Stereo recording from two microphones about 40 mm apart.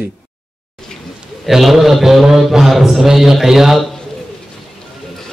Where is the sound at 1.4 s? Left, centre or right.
Centre.